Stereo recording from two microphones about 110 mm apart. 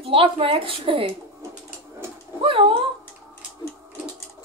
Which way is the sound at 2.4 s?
55° right (ahead or behind).